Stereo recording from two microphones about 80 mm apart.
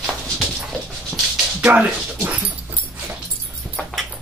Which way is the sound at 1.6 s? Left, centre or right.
Right.